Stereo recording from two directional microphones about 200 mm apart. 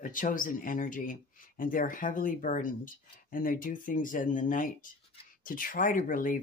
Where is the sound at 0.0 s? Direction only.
40° left (ahead or behind).